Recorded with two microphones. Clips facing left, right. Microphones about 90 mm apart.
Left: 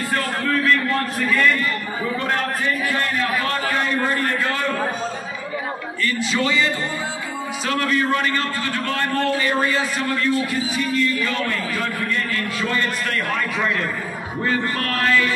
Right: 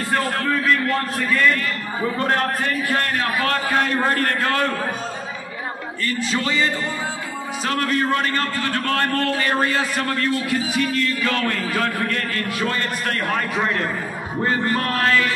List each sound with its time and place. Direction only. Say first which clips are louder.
2.1 s a man's voice: right 3 dB; 40° right (ahead or behind); by 4.5 s 55° right (ahead or behind)
6.0 s a man's voice: left 2 dB; 40° right (ahead or behind)
14.8 s music: right 1 dB; 25° right (ahead or behind)